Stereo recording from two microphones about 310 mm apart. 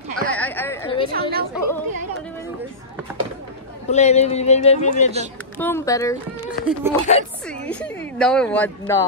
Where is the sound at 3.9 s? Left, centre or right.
Left.